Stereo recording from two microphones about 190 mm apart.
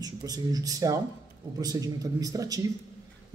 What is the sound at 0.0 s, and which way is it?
A man's voice, 20° right (ahead or behind).